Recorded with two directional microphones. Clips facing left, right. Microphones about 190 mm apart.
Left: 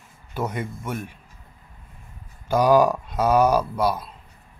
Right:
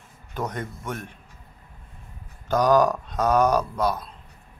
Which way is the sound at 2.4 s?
10° left (ahead or behind).